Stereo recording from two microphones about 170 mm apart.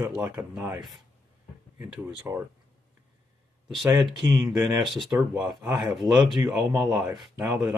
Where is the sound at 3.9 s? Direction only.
25° right (ahead or behind).